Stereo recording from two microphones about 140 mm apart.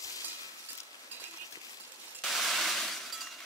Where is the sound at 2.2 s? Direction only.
Centre (ahead or behind).